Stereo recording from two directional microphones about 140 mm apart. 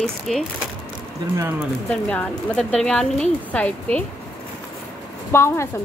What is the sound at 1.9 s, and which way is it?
Speech, 5° left (ahead or behind).